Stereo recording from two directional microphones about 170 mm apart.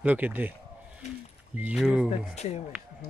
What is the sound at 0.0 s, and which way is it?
Speech, 10° right (ahead or behind).